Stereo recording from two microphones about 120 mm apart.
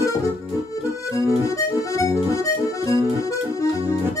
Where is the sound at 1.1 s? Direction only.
25° left (ahead or behind).